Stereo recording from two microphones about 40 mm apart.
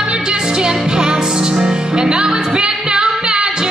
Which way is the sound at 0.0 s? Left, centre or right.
Right.